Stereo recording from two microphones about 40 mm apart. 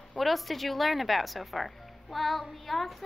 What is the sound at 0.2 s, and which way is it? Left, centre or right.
A child's voice, centre.